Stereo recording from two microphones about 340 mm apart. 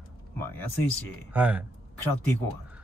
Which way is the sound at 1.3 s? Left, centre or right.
Centre.